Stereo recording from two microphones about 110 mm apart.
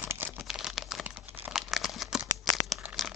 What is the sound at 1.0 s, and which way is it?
Crumpling, 15° right (ahead or behind).